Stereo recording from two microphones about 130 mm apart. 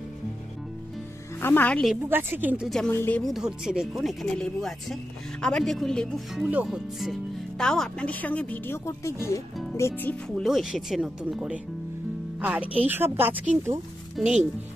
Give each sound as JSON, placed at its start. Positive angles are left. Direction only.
{"t": 1.4, "sound": "speech", "side_deg": 15}
{"t": 2.0, "sound": "a woman's voice", "side_deg": -15}
{"t": 2.9, "sound": "speech", "side_deg": 20}
{"t": 3.2, "sound": "speech", "side_deg": 0}
{"t": 10.4, "sound": "a woman's voice", "side_deg": 0}
{"t": 14.1, "sound": "speech", "side_deg": -5}